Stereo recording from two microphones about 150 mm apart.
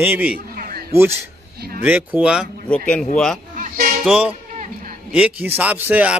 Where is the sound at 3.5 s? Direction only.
65° right (ahead or behind).